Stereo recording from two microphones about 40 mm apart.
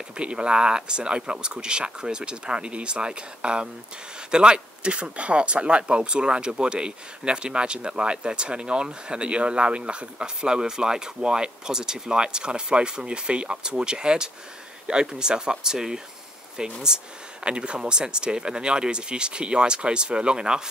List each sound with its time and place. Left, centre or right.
0.2 s speech: right